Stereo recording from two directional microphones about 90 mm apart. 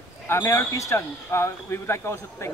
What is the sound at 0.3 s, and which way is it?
Speech, 30° left (ahead or behind).